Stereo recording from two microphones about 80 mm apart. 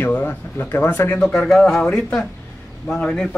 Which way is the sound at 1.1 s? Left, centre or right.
Centre.